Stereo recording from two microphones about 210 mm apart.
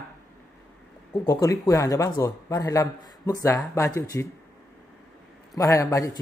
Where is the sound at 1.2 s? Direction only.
15° left (ahead or behind).